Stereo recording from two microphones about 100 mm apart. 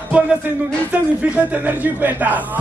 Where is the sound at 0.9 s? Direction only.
15° right (ahead or behind).